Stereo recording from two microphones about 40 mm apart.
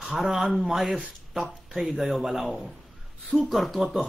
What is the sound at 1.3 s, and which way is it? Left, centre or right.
Speech, centre.